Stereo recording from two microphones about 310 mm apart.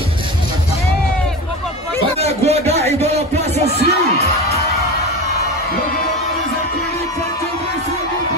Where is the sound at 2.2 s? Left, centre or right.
Centre.